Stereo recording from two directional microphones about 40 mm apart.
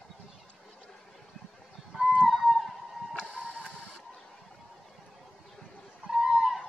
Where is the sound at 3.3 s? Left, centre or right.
Left.